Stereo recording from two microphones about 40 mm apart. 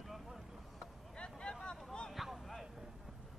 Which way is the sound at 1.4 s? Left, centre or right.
Left.